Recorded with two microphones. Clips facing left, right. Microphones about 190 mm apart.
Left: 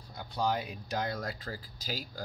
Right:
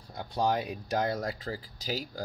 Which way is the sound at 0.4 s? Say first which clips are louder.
Right 3 dB; 25° right (ahead or behind).